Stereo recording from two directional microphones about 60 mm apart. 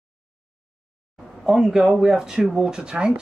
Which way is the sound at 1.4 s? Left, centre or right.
Centre.